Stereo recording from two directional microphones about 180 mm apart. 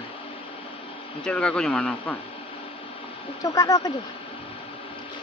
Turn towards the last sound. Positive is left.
turn(degrees=20)  # may be behind; listen again after turning